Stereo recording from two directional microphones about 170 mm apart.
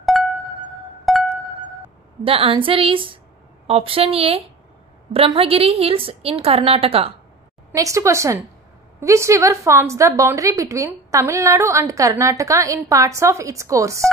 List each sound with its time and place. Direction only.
0.0 s music: centre (ahead or behind)
2.2 s a woman's voice: 30° right (ahead or behind)
7.7 s a woman's voice: 20° right (ahead or behind)